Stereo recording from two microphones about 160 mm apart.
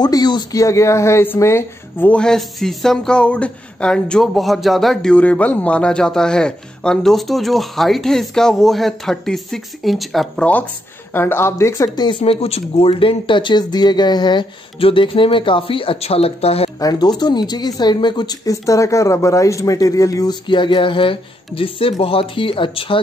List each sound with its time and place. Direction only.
0.0 s speech: 25° left (ahead or behind)
16.8 s speech: 25° left (ahead or behind)